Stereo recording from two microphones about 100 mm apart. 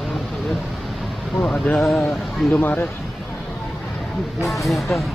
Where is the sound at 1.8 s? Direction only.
5° left (ahead or behind).